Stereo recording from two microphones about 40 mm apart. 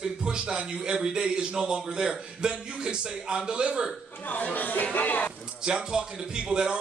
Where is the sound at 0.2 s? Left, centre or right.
Right.